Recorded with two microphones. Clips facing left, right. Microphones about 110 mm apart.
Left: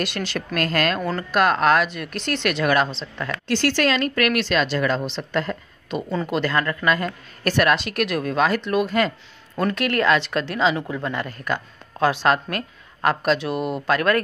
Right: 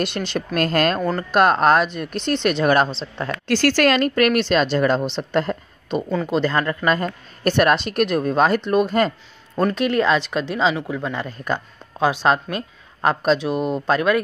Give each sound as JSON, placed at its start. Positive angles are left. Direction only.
{"t": 0.6, "sound": "speech", "side_deg": -40}
{"t": 2.1, "sound": "speech", "side_deg": -25}
{"t": 3.5, "sound": "speech", "side_deg": -50}
{"t": 4.1, "sound": "speech", "side_deg": -35}
{"t": 6.3, "sound": "speech", "side_deg": -25}
{"t": 9.6, "sound": "speech", "side_deg": -20}